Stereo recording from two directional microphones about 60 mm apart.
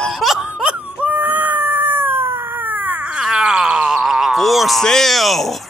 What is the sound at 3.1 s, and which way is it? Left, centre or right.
Speech, centre.